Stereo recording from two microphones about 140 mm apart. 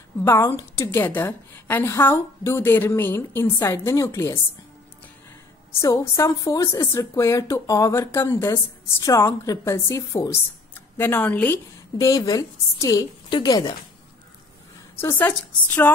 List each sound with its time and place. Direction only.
0.2 s a woman's voice: 20° left (ahead or behind)
5.8 s speech: 20° left (ahead or behind)
12.1 s speech: 25° left (ahead or behind)
15.0 s a woman's voice: 15° left (ahead or behind)